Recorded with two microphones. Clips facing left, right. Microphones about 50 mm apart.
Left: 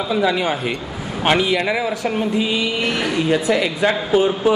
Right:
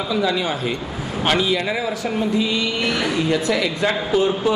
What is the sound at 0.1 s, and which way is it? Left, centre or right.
Speech, left.